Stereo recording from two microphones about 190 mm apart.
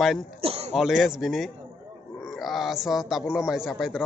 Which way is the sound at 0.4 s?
30° right (ahead or behind).